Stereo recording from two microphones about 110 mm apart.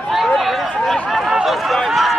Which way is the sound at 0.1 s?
Centre (ahead or behind).